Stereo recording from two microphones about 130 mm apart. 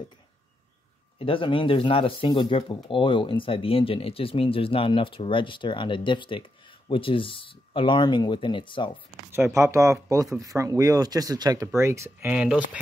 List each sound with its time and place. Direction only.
1.2 s speech: 45° left (ahead or behind)
9.3 s speech: 20° right (ahead or behind)